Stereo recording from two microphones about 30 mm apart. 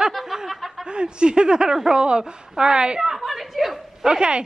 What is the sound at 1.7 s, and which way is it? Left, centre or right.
Speech, centre.